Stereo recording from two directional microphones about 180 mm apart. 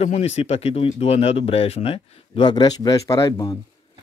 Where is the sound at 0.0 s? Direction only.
35° left (ahead or behind).